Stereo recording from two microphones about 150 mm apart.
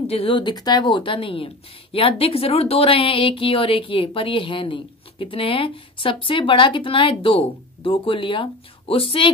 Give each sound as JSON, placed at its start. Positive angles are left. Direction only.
{"t": 0.1, "sound": "speech", "side_deg": 35}